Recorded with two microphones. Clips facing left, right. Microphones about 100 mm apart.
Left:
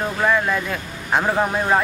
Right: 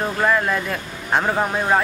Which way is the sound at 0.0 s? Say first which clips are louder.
Even; centre (ahead or behind).